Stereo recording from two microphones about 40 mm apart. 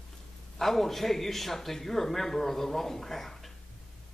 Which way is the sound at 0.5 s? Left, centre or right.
Centre.